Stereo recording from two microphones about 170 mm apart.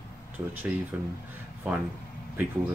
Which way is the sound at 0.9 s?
10° right (ahead or behind).